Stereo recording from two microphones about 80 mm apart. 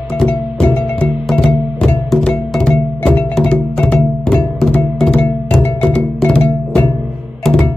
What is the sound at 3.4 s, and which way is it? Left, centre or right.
Music, centre.